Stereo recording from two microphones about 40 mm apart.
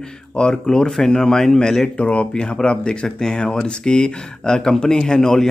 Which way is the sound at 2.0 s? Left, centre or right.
Left.